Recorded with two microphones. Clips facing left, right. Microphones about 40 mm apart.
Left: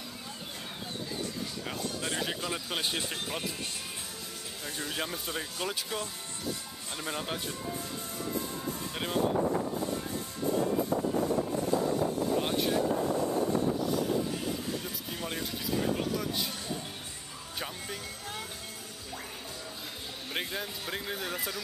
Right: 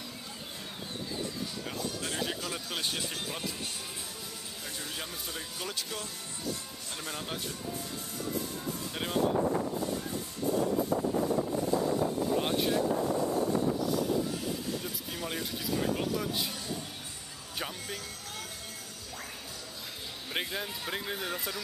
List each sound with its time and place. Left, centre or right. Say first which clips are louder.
2.0 s speech: left 1 dB; centre
4.7 s speech: left 6 dB; left
8.9 s speech: even; centre
12.4 s speech: even; centre
15.1 s speech: even; centre
20.3 s speech: right 1 dB; centre